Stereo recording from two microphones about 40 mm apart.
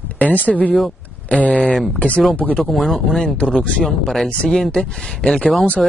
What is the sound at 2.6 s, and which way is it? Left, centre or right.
Speech, centre.